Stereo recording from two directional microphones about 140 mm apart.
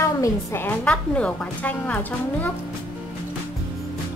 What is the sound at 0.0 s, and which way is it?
A woman's voice, 20° left (ahead or behind).